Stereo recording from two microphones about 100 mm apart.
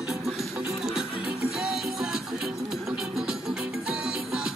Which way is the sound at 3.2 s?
5° right (ahead or behind).